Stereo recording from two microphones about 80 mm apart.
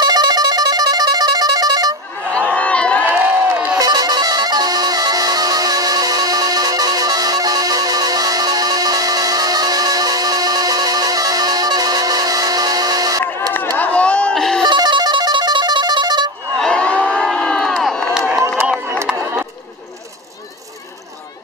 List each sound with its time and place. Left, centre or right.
0.0 s music: right
2.5 s crowd: centre
3.1 s crowd: right
3.7 s music: right
13.5 s a sound: left; by 14.6 s centre
14.6 s music: right
16.5 s crowd: centre
19.1 s a sound: centre